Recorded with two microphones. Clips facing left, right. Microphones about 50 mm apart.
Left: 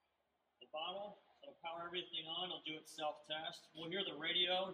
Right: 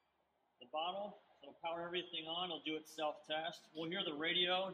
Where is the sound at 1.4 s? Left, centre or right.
Centre.